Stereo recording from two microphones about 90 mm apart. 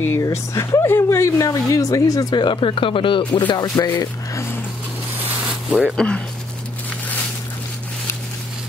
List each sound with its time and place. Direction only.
0.2 s speech: 35° left (ahead or behind); by 3.5 s 70° left (ahead or behind)
3.5 s speech: 45° left (ahead or behind)
5.2 s sanding: 20° right (ahead or behind)
5.5 s a sound: 5° right (ahead or behind)
5.9 s speech: 10° left (ahead or behind)